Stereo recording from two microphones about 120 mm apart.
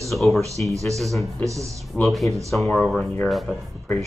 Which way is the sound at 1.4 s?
25° right (ahead or behind).